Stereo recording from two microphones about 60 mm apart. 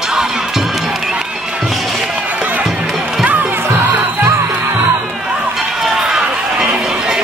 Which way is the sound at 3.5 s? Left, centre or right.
Right.